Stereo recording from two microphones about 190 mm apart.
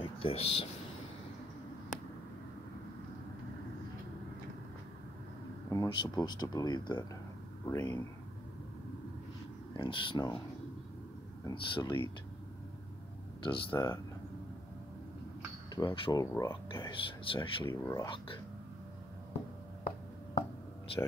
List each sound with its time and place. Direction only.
0.0 s speech: 30° left (ahead or behind)
5.7 s speech: 20° left (ahead or behind)
9.8 s speech: 25° left (ahead or behind)
11.4 s speech: 25° left (ahead or behind)
13.4 s speech: 25° left (ahead or behind)
13.7 s speech: 15° left (ahead or behind)
15.7 s speech: 20° left (ahead or behind)
16.9 s speech: 25° left (ahead or behind)
17.6 s speech: 15° left (ahead or behind)